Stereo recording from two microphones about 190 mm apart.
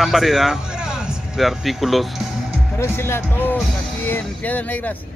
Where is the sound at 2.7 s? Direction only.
10° left (ahead or behind).